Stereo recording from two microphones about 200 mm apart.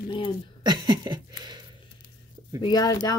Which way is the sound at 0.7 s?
20° right (ahead or behind).